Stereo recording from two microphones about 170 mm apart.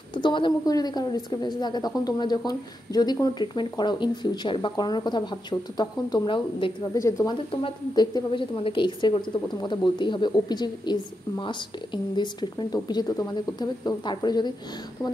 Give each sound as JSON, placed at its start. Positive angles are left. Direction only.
{"t": 0.1, "sound": "a woman's voice", "side_deg": 30}